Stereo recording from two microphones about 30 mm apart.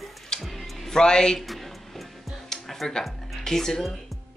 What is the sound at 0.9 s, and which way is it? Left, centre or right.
Speech, left.